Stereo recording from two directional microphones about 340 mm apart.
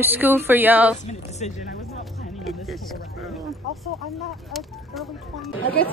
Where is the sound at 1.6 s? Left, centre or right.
Centre.